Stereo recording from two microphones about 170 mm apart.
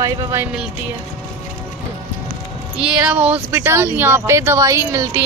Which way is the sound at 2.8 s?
5° right (ahead or behind).